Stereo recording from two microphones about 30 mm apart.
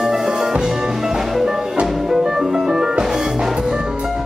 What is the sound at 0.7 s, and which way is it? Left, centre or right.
Music, centre.